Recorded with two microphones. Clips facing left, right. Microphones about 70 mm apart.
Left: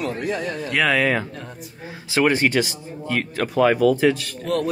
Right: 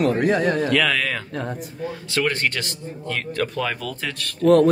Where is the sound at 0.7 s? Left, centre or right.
Centre.